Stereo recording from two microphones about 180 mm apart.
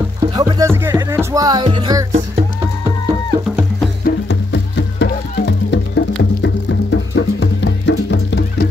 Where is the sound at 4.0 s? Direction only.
70° left (ahead or behind).